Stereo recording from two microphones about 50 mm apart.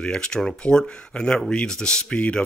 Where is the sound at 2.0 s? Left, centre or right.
Left.